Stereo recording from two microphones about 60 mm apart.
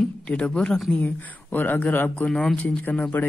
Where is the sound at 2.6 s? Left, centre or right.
Left.